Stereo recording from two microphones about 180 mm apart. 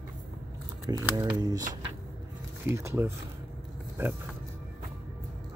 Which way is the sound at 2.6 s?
15° right (ahead or behind).